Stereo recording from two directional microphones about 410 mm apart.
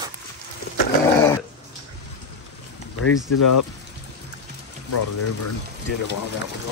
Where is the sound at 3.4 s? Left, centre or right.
Left.